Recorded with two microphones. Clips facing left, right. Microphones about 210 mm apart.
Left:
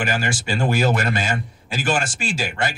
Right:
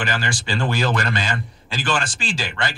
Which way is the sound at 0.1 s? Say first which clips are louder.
Left 2 dB; 45° left (ahead or behind).